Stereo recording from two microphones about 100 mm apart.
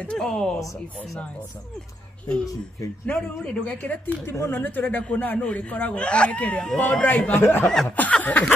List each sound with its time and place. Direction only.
0.0 s speech: 10° left (ahead or behind)
2.2 s speech: 10° left (ahead or behind)
7.6 s chuckle: 5° left (ahead or behind)
7.9 s speech: 15° left (ahead or behind)